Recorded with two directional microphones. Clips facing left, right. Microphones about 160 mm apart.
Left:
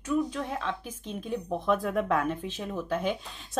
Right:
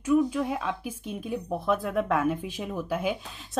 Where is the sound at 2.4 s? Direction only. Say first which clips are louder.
Right 1 dB; 10° right (ahead or behind).